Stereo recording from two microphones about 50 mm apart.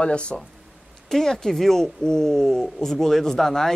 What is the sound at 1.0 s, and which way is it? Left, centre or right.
Speech, centre.